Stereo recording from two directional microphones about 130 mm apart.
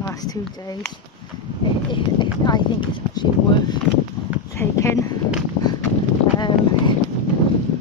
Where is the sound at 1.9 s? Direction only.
40° left (ahead or behind).